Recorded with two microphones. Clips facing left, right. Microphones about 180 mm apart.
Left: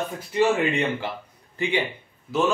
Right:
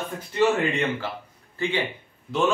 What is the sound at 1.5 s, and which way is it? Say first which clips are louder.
Speech: left 1 dB; 15° left (ahead or behind).